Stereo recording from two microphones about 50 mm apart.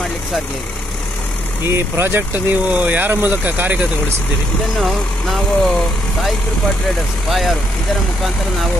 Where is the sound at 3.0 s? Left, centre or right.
Right.